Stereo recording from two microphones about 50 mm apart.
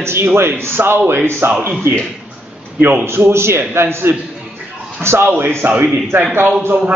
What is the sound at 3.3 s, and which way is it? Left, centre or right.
A man's voice, right.